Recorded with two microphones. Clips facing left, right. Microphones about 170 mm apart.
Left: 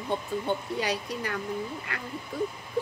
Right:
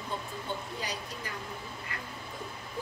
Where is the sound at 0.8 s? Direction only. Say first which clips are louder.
Left 8 dB; 70° left (ahead or behind).